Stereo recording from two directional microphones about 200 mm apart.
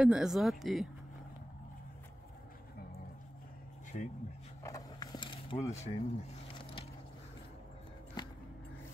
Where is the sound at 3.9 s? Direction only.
40° left (ahead or behind).